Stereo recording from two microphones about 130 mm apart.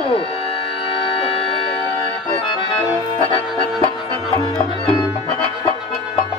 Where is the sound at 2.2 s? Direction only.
40° left (ahead or behind).